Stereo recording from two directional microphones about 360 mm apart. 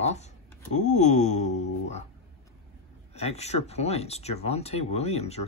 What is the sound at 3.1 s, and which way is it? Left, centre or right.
Speech, centre.